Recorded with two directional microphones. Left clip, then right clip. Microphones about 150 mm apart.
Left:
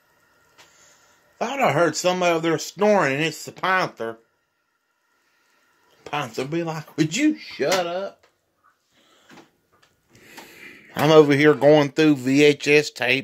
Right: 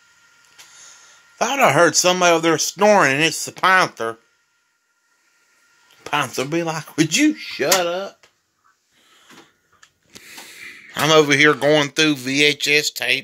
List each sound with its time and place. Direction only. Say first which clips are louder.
0.7 s speech: right 9 dB; 35° right (ahead or behind)
6.0 s speech: right 6 dB; 40° right (ahead or behind)
10.2 s speech: right 4 dB; 35° left (ahead or behind); by 13.2 s 55° left (ahead or behind)